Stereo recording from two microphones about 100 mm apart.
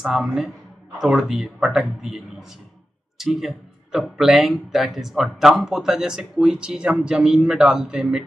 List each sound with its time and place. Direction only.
0.0 s speech: 5° right (ahead or behind)